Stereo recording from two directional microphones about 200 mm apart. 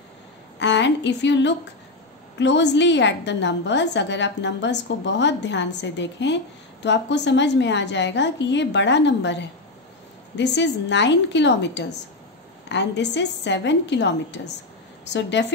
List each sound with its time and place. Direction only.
0.6 s a woman's voice: 60° left (ahead or behind)